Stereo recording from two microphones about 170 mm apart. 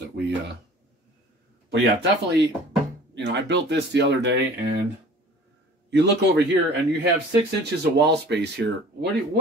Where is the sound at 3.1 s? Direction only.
90° right.